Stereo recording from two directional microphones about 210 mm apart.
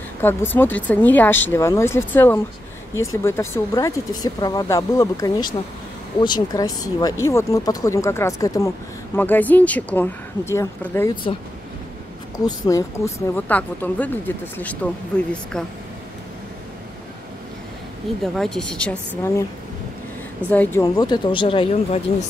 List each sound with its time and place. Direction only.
0.2 s speech: 10° left (ahead or behind)
12.4 s a woman's voice: 15° left (ahead or behind)
18.2 s a woman's voice: centre (ahead or behind)
20.4 s speech: 5° left (ahead or behind)
20.8 s speech: 20° left (ahead or behind)